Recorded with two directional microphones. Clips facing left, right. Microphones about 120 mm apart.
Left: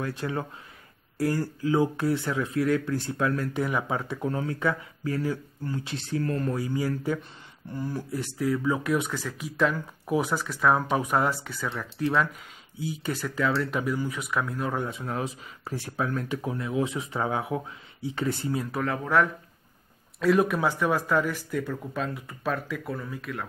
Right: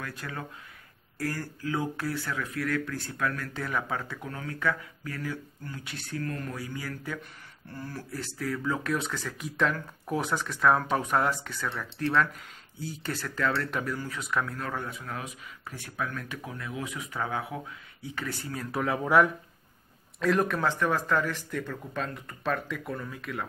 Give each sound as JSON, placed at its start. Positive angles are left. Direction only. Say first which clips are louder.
{"t": 0.0, "sound": "speech", "louder": "left 7 dB", "side_deg": 25}
{"t": 7.7, "sound": "speech", "louder": "left 6 dB", "side_deg": 15}
{"t": 18.7, "sound": "speech", "louder": "right 4 dB", "side_deg": -5}
{"t": 20.2, "sound": "speech", "louder": "left 4 dB", "side_deg": 10}